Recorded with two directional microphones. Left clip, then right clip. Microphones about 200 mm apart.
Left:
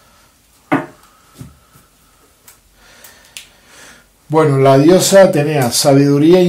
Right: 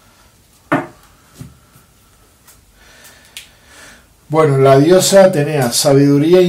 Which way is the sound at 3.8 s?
30° left (ahead or behind).